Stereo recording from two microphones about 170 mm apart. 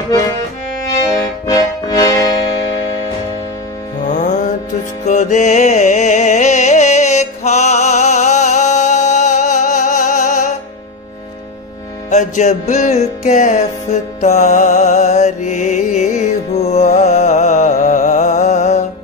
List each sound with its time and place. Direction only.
1.5 s music: 20° left (ahead or behind)
4.1 s music: 45° left (ahead or behind)
12.1 s music: 45° left (ahead or behind)